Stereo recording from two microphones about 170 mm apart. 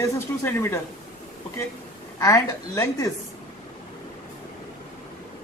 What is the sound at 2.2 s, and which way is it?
Speech, 20° left (ahead or behind).